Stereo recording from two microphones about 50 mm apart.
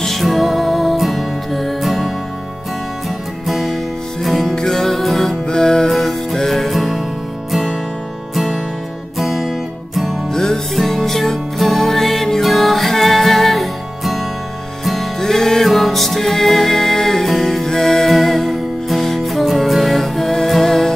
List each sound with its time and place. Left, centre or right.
0.0 s music: centre
3.4 s music: centre
9.2 s music: centre
10.3 s music: centre